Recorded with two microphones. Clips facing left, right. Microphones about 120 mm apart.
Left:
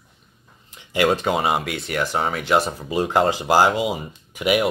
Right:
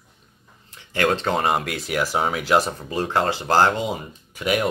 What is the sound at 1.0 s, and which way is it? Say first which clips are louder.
Speech: left 1 dB; 5° left (ahead or behind).